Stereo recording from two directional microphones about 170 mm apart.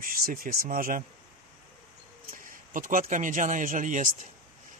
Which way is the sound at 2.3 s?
55° right (ahead or behind).